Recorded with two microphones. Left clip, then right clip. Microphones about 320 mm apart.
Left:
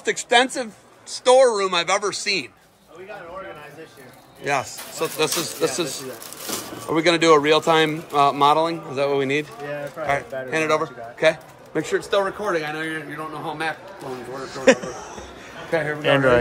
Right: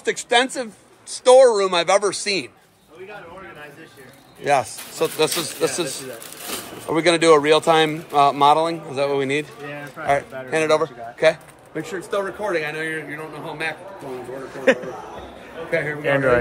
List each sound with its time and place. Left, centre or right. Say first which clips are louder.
0.0 s speech: left 1 dB; centre
4.5 s speech: right 4 dB; centre
11.7 s speech: left 4 dB; left
12.4 s speech: right 1 dB; centre